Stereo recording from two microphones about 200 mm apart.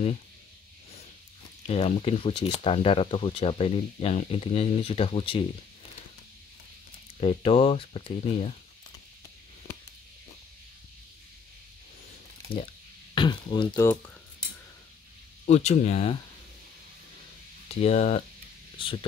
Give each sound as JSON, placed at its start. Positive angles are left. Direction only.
{"t": 1.7, "sound": "speech", "side_deg": 30}
{"t": 7.2, "sound": "speech", "side_deg": 30}
{"t": 13.1, "sound": "a sound", "side_deg": 25}
{"t": 13.7, "sound": "speech", "side_deg": 10}
{"t": 15.4, "sound": "speech", "side_deg": 35}
{"t": 17.8, "sound": "speech", "side_deg": 35}